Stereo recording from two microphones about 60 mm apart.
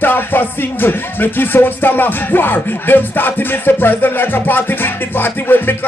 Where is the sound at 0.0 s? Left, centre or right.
Left.